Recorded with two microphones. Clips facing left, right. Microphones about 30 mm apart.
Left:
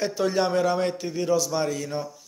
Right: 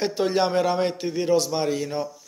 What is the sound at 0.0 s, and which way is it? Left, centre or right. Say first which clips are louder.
A man's voice: right 1 dB; right.